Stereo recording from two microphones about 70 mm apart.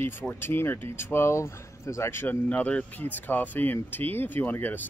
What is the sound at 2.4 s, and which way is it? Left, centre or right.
Speech, centre.